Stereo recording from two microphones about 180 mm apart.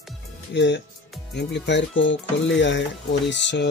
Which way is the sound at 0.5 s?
75° left (ahead or behind).